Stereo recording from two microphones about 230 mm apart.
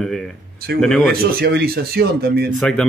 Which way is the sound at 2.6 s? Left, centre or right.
Centre.